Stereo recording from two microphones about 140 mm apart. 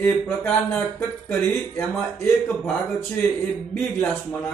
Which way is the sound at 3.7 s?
10° left (ahead or behind).